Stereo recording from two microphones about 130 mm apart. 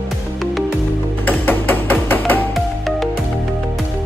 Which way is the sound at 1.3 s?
15° left (ahead or behind).